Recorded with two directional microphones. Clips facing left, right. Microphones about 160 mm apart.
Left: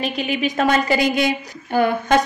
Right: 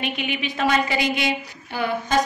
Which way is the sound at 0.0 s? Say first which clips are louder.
Left 5 dB; 35° left (ahead or behind).